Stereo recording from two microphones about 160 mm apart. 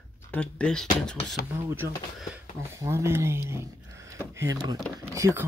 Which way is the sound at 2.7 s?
15° right (ahead or behind).